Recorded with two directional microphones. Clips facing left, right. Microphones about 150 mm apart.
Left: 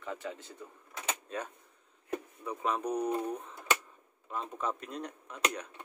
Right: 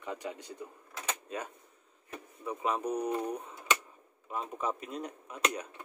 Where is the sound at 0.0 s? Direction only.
15° right (ahead or behind).